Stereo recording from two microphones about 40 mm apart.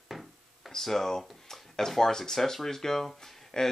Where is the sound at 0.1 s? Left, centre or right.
Centre.